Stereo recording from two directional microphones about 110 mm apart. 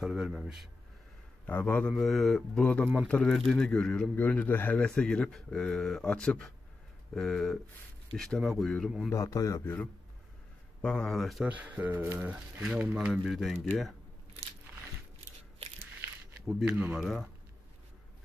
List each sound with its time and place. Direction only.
0.0 s a man's voice: 5° right (ahead or behind)
1.4 s speech: 10° left (ahead or behind)
2.6 s a man's voice: 10° left (ahead or behind)
9.1 s a man's voice: 30° left (ahead or behind)
10.8 s a man's voice: 10° left (ahead or behind)
11.4 s speech: 15° right (ahead or behind)
16.6 s speech: 15° right (ahead or behind)
17.0 s a man's voice: centre (ahead or behind)